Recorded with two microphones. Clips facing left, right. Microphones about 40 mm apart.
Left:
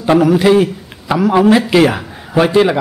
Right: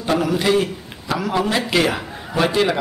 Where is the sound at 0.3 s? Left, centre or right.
Centre.